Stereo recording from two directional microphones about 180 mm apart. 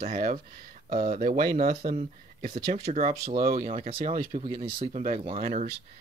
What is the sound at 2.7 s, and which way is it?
Speech, 40° right (ahead or behind).